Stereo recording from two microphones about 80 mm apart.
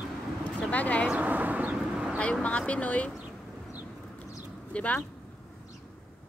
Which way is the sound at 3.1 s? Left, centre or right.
Centre.